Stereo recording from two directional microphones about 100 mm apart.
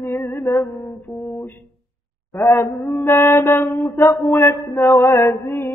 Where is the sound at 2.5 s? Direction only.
20° left (ahead or behind).